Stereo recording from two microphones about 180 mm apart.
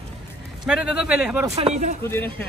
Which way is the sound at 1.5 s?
40° right (ahead or behind).